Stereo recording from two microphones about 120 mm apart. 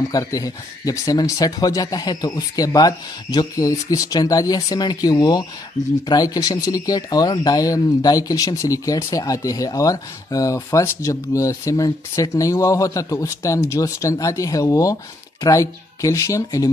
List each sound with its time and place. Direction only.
0.1 s speech: 30° left (ahead or behind)